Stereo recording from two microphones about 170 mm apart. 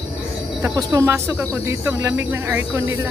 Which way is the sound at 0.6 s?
20° right (ahead or behind).